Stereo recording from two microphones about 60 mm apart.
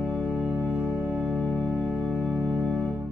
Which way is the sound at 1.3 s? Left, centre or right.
Left.